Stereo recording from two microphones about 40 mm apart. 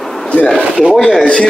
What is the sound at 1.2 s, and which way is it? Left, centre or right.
Speech, left.